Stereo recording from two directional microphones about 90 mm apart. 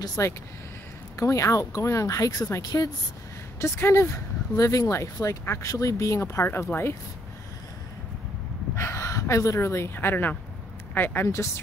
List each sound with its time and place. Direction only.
0.2 s speech: 35° left (ahead or behind)
2.6 s speech: 50° left (ahead or behind)
3.5 s speech: 30° left (ahead or behind)
8.7 s speech: 35° left (ahead or behind)